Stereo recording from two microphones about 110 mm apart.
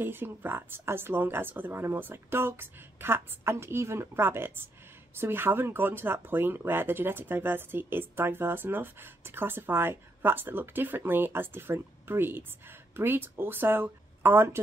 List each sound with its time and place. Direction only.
0.0 s speech: 20° right (ahead or behind)